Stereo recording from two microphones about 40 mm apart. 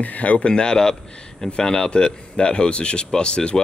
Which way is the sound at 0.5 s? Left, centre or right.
Left.